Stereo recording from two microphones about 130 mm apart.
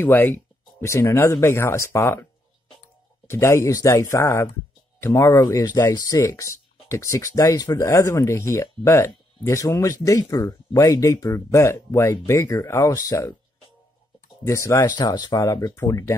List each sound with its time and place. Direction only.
0.0 s speech: 15° left (ahead or behind)
3.3 s speech: 20° left (ahead or behind)
14.4 s speech: 20° left (ahead or behind)